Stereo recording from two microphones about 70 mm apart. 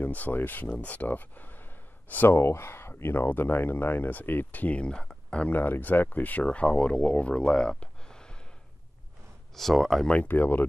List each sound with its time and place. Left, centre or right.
0.0 s speech: left
2.3 s speech: left; by 5.5 s centre
5.5 s speech: left
9.6 s speech: centre
10.1 s speech: left